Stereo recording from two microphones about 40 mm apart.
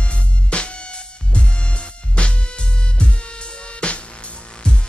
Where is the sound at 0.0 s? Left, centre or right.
Left.